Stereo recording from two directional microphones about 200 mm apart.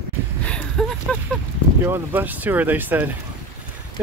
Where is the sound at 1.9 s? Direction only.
10° right (ahead or behind).